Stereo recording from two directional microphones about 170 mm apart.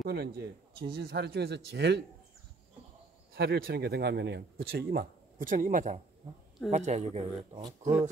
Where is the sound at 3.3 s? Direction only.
65° right (ahead or behind).